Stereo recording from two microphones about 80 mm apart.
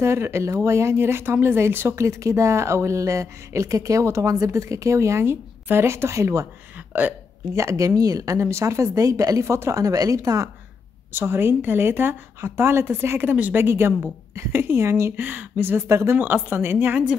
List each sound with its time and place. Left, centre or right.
0.0 s speech: right
6.9 s speech: right
7.5 s speech: right
11.1 s speech: right